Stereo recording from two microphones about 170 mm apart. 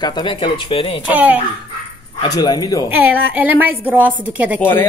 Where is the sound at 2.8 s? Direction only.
10° right (ahead or behind).